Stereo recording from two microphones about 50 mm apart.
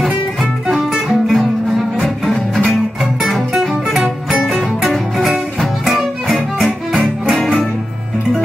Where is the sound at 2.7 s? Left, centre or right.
Centre.